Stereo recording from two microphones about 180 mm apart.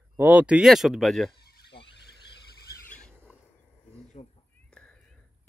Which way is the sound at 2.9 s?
5° left (ahead or behind).